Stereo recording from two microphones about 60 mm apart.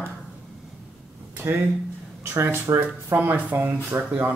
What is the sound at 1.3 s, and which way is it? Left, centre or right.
Speech, right.